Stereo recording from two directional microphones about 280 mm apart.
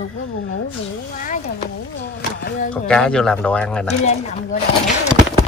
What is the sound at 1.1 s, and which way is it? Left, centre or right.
Speech, left.